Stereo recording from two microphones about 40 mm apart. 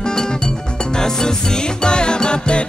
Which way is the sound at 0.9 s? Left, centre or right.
Centre.